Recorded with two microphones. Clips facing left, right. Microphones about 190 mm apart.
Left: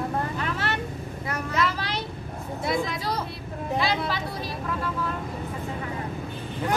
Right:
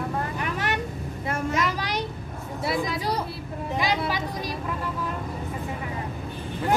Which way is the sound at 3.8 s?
15° right (ahead or behind).